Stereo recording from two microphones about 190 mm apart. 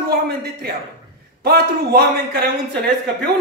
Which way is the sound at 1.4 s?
55° right (ahead or behind).